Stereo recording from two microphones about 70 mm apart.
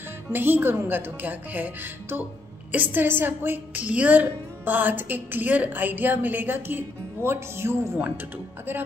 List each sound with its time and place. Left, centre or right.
0.3 s a woman's voice: right
7.2 s music: right